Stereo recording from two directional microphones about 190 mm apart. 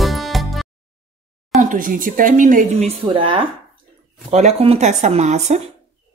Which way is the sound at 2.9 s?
30° right (ahead or behind).